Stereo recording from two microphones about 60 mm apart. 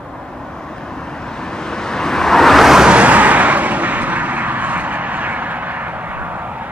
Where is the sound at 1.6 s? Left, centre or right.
Centre.